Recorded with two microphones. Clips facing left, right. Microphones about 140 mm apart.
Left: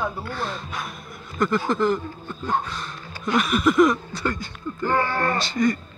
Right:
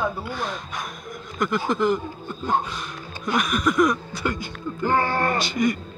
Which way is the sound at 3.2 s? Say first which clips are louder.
Left 2 dB; centre (ahead or behind).